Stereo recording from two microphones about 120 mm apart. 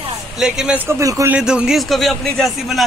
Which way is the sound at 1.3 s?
5° right (ahead or behind).